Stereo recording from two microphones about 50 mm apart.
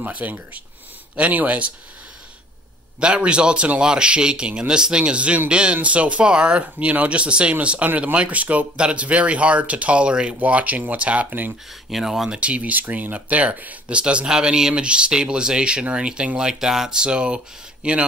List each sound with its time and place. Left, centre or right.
0.0 s speech: right
3.0 s speech: right
11.9 s speech: centre
12.3 s speech: right